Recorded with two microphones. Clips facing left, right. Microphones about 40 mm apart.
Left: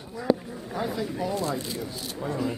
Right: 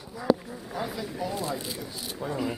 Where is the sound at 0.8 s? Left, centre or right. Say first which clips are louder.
Left 3 dB; centre.